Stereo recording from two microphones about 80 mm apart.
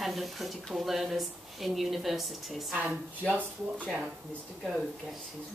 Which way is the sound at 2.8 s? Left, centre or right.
Right.